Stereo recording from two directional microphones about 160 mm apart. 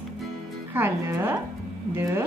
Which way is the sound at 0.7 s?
15° right (ahead or behind).